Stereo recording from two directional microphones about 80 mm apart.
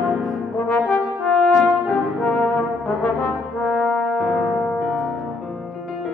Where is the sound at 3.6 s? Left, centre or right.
Centre.